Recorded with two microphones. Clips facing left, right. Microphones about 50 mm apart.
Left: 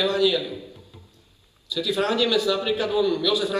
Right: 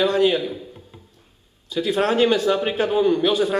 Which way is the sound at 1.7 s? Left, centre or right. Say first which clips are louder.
Right 3 dB; right.